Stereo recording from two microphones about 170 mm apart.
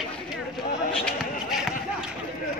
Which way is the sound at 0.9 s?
5° left (ahead or behind).